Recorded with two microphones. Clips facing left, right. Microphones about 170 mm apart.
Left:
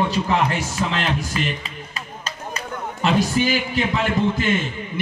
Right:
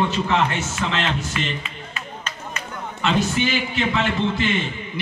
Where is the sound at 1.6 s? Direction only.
35° left (ahead or behind).